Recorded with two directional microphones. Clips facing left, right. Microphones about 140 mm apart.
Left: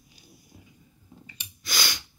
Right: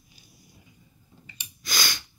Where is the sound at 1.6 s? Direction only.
10° left (ahead or behind).